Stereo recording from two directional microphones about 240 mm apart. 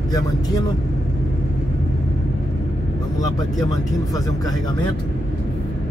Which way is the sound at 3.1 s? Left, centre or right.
Centre.